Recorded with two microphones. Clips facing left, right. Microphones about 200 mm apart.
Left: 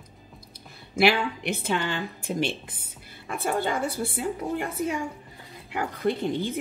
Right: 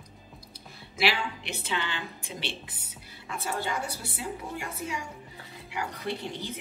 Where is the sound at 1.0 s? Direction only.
50° left (ahead or behind).